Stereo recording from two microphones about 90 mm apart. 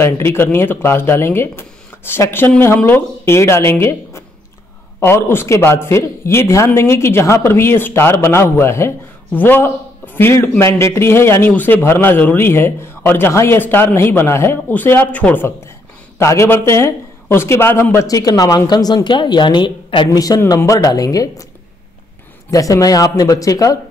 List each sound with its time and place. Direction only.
0.0 s a man's voice: 25° left (ahead or behind)
16.2 s a man's voice: 30° left (ahead or behind)
18.0 s a woman's voice: 40° left (ahead or behind); by 20.1 s 65° left (ahead or behind)
20.1 s a woman's voice: 40° left (ahead or behind)
22.5 s a woman's voice: 40° left (ahead or behind)